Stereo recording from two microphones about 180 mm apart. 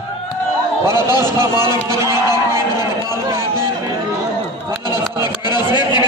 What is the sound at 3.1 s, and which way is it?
Speech, 15° right (ahead or behind).